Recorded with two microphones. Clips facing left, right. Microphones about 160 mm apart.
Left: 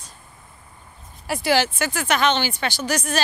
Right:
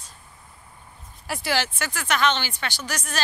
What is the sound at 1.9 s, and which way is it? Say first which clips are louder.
Speech: left 1 dB; 20° left (ahead or behind).